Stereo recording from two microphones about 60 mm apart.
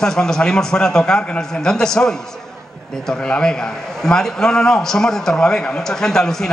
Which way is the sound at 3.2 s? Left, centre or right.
Centre.